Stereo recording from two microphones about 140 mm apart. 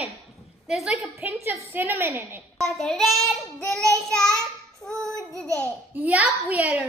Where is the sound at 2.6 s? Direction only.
Centre (ahead or behind).